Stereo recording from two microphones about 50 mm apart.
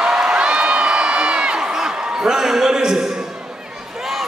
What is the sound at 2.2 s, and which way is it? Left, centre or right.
Speech, centre.